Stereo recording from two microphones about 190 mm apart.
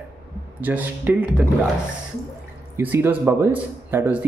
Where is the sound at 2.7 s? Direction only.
10° right (ahead or behind).